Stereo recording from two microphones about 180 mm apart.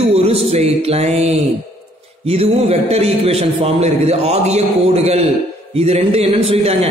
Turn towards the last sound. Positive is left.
turn(degrees=-35)  # may be behind; listen again after turning